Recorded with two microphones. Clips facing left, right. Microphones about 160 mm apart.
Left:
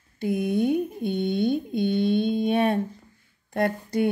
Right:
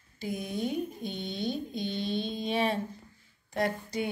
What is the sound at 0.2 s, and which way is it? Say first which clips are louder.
Mantra: left 9 dB; 60° left (ahead or behind).